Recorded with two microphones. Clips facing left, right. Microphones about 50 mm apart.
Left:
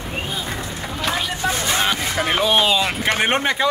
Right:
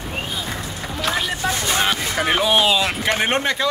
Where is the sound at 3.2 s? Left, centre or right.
Centre.